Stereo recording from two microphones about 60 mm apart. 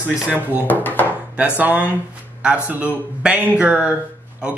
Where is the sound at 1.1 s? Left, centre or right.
Right.